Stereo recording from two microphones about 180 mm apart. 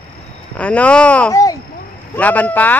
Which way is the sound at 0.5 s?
5° left (ahead or behind).